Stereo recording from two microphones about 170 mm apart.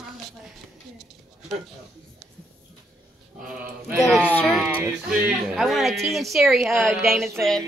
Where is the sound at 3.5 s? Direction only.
5° right (ahead or behind).